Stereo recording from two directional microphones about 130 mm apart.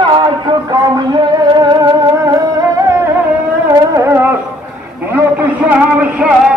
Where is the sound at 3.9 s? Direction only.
20° right (ahead or behind).